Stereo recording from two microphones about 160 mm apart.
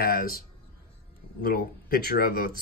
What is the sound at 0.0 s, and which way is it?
Speech, 70° left (ahead or behind).